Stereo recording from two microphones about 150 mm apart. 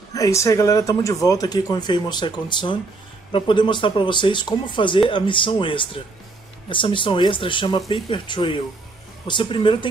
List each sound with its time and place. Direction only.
0.1 s speech: 20° left (ahead or behind)